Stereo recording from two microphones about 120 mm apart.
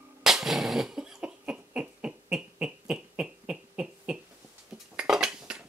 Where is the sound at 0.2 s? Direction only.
5° right (ahead or behind).